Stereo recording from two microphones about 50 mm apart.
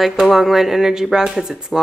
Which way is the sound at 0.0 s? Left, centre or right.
Centre.